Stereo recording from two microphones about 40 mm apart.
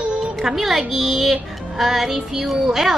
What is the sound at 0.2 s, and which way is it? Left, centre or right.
A woman's voice, centre.